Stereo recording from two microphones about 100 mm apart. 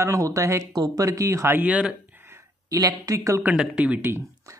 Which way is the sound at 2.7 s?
35° right (ahead or behind).